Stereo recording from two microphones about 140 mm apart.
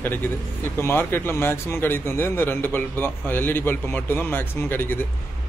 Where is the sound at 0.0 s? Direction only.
15° left (ahead or behind).